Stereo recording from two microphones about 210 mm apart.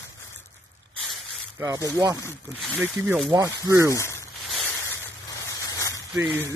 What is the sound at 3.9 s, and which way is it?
Speech, 10° left (ahead or behind).